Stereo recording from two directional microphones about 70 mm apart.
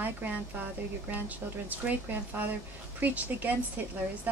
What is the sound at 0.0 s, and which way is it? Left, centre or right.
Speech, right.